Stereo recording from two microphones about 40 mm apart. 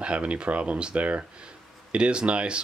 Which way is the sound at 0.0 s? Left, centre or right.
Right.